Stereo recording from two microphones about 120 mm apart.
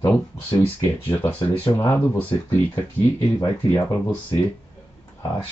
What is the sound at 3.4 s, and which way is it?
Speech, 35° left (ahead or behind).